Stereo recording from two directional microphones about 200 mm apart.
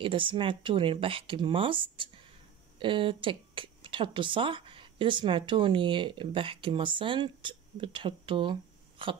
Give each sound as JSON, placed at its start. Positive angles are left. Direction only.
{"t": 0.0, "sound": "speech", "side_deg": -25}